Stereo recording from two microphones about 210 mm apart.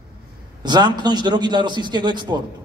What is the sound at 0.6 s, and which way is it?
A man's voice, 20° right (ahead or behind).